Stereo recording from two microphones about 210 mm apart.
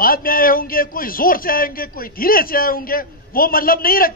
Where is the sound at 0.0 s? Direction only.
45° left (ahead or behind).